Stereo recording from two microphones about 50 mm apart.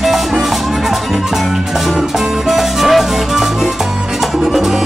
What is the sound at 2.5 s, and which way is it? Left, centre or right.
Music, centre.